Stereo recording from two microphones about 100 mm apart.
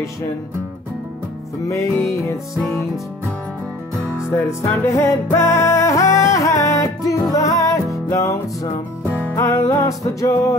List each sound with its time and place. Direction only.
1.7 s music: 30° left (ahead or behind)
4.3 s music: 30° left (ahead or behind)